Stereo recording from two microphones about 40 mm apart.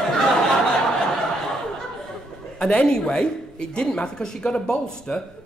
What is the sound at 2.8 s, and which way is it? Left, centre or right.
Speech, centre.